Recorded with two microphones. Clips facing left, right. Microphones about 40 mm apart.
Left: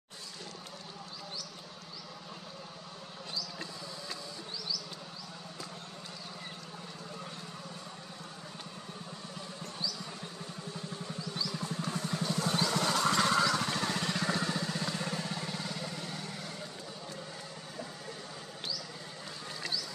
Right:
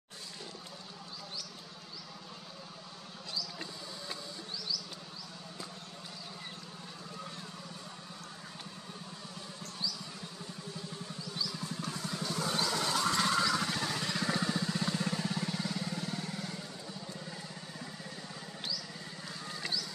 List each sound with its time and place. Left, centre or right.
11.3 s vehicle: centre
12.3 s vehicle: centre